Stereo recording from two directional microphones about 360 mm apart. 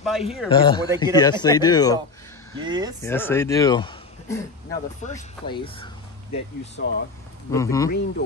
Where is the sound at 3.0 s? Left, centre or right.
Centre.